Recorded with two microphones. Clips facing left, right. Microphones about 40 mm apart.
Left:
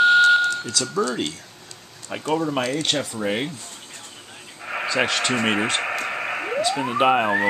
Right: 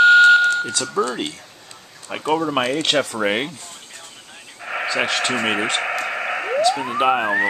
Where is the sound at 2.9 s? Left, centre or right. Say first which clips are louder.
Right 5 dB; right.